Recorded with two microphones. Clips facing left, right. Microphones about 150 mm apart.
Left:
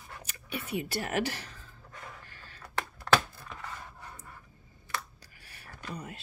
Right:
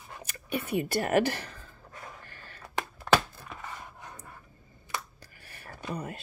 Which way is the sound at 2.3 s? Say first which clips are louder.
Right 3 dB; 50° right (ahead or behind).